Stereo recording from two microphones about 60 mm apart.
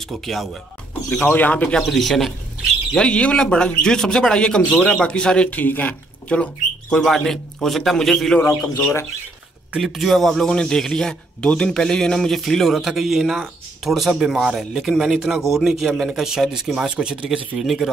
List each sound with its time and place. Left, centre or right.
0.0 s a man's voice: centre
1.2 s speech: left
1.8 s a man's voice: centre
3.0 s a man's voice: left
5.5 s speech: left
7.0 s a man's voice: centre
9.8 s a man's voice: centre